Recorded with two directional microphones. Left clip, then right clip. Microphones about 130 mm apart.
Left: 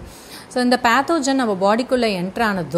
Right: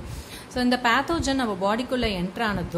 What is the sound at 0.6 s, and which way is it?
A woman's voice, 40° left (ahead or behind).